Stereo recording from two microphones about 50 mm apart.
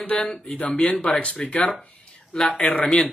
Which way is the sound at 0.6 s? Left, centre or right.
Left.